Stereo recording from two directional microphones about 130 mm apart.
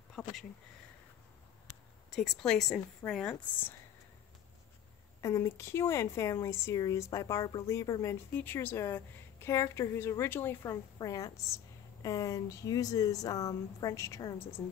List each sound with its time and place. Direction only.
0.2 s speech: 5° left (ahead or behind)
2.1 s speech: 5° left (ahead or behind)
5.2 s a woman's voice: 20° left (ahead or behind)
8.4 s a woman's voice: 15° left (ahead or behind)